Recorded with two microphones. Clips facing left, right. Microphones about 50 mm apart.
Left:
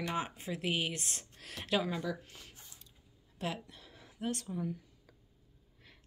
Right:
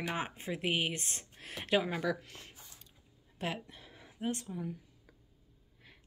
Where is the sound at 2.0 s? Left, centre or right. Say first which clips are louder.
Right 4 dB; right.